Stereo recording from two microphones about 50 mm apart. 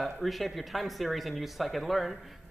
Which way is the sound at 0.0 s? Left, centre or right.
Centre.